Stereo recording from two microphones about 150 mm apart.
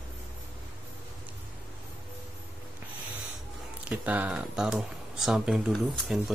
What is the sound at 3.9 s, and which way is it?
Speech, 10° right (ahead or behind).